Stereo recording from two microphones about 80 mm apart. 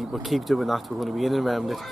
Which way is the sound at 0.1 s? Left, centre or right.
Centre.